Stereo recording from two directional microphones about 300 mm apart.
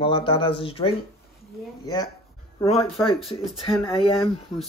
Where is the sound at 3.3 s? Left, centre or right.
Centre.